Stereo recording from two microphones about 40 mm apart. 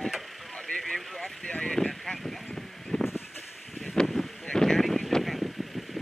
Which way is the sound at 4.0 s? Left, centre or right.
Centre.